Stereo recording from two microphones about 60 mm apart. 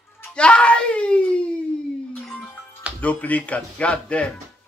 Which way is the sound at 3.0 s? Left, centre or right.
Left.